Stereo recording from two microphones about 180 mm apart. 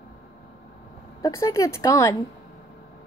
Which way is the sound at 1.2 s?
15° left (ahead or behind).